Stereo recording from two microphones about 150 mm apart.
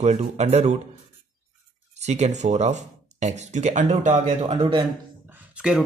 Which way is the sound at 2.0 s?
50° right (ahead or behind).